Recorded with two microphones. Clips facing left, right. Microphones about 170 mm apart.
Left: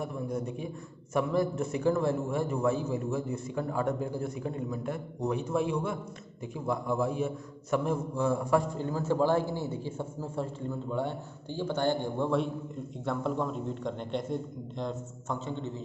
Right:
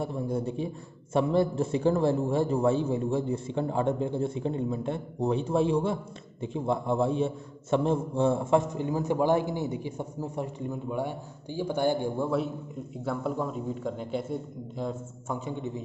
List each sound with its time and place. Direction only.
0.0 s a man's voice: 30° right (ahead or behind); by 15.8 s 15° right (ahead or behind)